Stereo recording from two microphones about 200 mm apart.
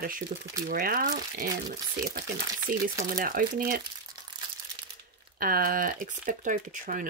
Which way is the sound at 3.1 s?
45° right (ahead or behind).